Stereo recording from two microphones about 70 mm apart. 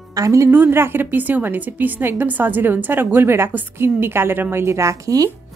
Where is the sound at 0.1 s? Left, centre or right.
Right.